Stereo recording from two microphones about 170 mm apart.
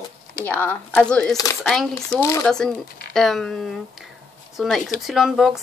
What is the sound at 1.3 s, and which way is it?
Speech, 20° left (ahead or behind).